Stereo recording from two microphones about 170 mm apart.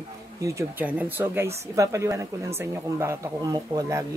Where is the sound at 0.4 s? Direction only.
20° right (ahead or behind).